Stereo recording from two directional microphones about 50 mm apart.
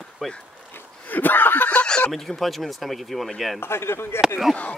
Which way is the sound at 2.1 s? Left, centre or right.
Centre.